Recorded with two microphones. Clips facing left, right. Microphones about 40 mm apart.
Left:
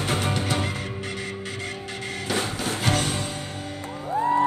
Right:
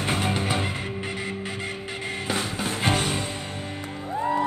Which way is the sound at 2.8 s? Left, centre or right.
Right.